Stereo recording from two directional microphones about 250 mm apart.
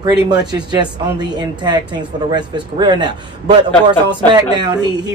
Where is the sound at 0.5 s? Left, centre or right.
Centre.